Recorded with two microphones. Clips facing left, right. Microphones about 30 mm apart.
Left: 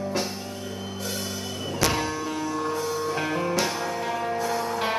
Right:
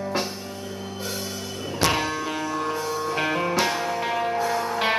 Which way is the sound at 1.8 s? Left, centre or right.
Right.